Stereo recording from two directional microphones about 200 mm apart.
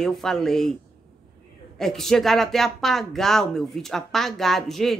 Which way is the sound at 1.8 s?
Centre (ahead or behind).